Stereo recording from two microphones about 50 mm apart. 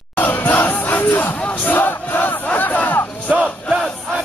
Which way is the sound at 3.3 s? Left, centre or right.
Centre.